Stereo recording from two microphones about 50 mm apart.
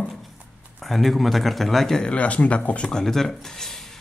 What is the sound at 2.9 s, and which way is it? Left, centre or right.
Speech, centre.